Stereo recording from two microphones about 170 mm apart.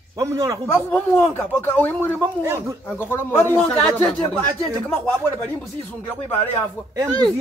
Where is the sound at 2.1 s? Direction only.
15° right (ahead or behind).